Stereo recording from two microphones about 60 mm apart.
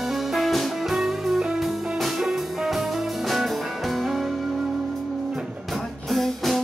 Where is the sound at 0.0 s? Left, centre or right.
Centre.